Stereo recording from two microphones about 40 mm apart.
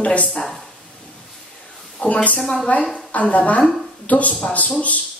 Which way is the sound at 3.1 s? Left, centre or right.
Left.